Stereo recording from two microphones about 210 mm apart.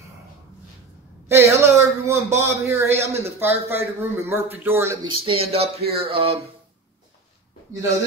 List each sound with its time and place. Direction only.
1.3 s a man's voice: 10° right (ahead or behind)
5.0 s speech: 25° right (ahead or behind)